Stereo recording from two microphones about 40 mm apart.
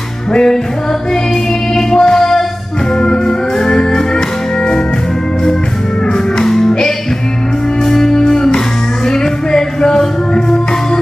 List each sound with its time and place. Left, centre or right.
0.3 s music: centre
1.8 s music: centre
6.3 s music: centre
7.8 s music: centre